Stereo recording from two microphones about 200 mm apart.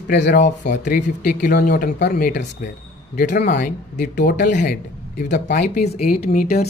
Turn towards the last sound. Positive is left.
turn(degrees=30)  # may be behind; listen again after turning